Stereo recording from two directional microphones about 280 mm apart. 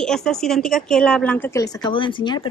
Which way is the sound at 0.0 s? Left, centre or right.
Centre.